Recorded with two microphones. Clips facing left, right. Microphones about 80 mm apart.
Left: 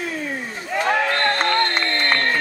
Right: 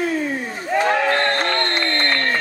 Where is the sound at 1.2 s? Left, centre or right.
Centre.